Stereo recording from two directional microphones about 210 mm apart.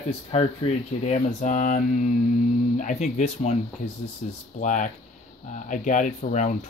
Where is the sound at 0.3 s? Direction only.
30° left (ahead or behind).